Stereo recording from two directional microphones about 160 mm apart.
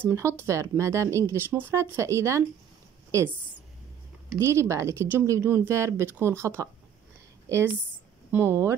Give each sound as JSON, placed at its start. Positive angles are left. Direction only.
{"t": 0.0, "sound": "speech", "side_deg": -15}
{"t": 4.4, "sound": "speech", "side_deg": -15}